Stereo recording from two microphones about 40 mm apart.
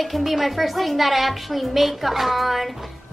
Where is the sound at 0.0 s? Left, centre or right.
Centre.